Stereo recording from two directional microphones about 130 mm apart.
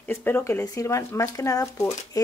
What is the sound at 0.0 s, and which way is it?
Speech, 15° left (ahead or behind).